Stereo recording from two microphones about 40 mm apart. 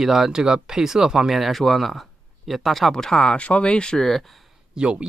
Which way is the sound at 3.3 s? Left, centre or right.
Left.